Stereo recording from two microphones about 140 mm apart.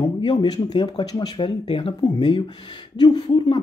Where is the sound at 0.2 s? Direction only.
35° left (ahead or behind).